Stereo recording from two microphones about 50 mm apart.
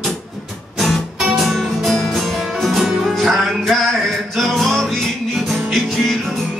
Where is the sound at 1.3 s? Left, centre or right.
Centre.